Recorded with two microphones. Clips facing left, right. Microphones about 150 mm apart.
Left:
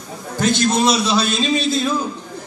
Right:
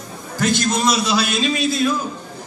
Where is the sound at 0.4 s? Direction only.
25° left (ahead or behind).